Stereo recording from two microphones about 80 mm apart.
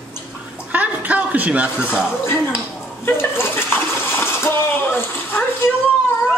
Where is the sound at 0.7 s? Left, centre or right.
Centre.